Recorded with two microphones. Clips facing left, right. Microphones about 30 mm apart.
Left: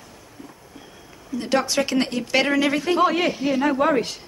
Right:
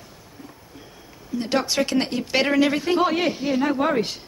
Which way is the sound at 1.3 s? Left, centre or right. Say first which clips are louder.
Left 1 dB; right.